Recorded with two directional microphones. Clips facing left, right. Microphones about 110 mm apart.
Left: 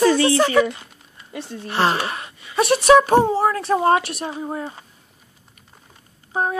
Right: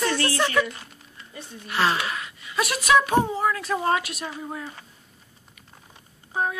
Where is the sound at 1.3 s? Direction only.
85° left.